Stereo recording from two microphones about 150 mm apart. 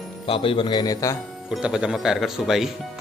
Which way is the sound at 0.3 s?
35° left (ahead or behind).